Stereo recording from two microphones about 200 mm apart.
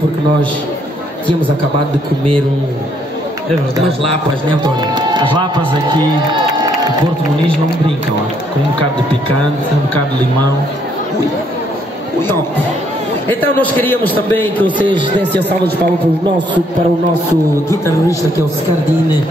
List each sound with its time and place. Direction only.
4.5 s a man's voice: 20° right (ahead or behind)
13.3 s a man's voice: 10° left (ahead or behind)
14.9 s a man's voice: 25° right (ahead or behind)